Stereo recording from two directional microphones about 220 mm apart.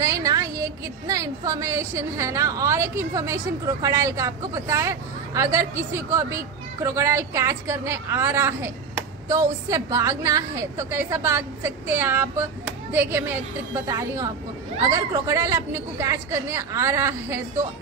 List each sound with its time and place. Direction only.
0.0 s a woman's voice: 15° right (ahead or behind)